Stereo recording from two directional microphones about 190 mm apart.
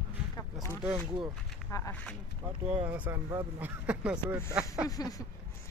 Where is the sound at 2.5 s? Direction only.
30° right (ahead or behind).